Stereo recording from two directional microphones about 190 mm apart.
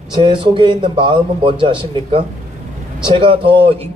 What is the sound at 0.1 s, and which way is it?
A man's voice, 25° right (ahead or behind).